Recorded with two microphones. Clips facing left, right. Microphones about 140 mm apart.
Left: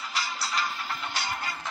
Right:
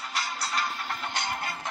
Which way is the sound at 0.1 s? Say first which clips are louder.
Even; 50° right (ahead or behind).